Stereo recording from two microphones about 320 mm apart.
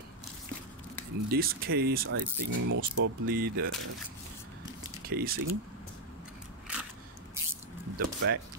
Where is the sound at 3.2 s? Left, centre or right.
Right.